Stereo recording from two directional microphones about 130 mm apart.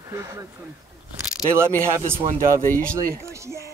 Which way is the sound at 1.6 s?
20° right (ahead or behind).